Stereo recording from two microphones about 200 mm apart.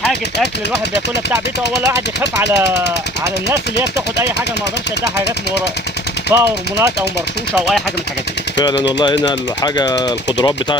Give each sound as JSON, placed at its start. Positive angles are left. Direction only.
{"t": 6.3, "sound": "speech", "side_deg": -10}
{"t": 8.5, "sound": "speech", "side_deg": 20}